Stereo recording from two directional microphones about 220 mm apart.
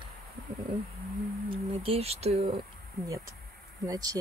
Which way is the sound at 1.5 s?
25° right (ahead or behind).